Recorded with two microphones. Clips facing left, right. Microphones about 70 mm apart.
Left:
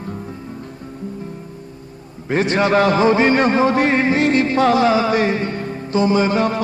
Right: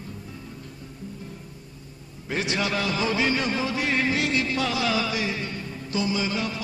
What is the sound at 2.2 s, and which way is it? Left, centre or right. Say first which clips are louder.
A man's voice: left 10 dB; left.